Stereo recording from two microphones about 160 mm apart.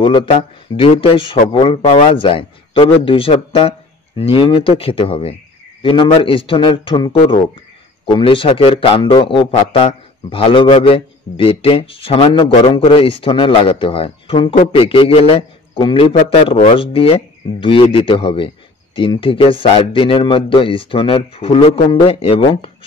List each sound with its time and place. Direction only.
0.0 s a man's voice: 35° left (ahead or behind)